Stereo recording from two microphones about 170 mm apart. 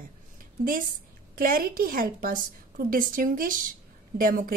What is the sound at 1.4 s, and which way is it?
A woman's voice, 60° right (ahead or behind).